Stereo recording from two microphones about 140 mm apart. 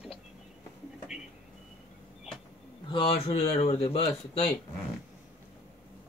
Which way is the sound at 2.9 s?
40° left (ahead or behind).